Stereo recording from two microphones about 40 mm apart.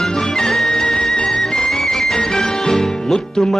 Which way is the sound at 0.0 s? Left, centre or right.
Centre.